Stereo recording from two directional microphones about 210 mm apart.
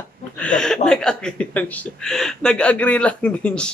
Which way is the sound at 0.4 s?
5° left (ahead or behind).